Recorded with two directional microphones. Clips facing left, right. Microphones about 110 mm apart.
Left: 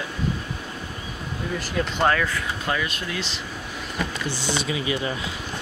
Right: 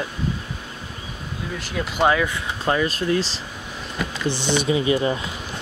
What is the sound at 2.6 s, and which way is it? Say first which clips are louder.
Speech: right 9 dB; 35° right (ahead or behind).